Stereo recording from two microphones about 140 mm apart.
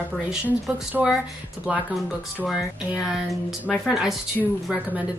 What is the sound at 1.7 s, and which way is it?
Speech, centre (ahead or behind).